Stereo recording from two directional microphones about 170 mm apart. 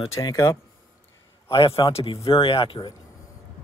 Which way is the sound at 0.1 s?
20° left (ahead or behind).